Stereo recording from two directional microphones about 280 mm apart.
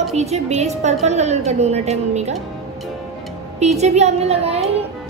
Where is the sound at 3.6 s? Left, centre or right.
Right.